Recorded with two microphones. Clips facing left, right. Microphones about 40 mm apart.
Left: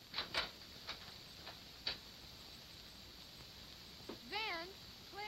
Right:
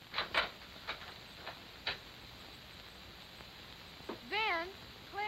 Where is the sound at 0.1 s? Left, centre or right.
Right.